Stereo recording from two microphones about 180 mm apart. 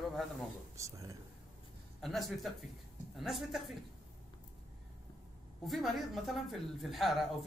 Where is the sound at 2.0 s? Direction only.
Centre (ahead or behind).